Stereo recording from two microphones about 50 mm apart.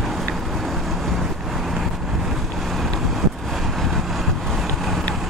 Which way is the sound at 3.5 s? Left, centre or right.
Centre.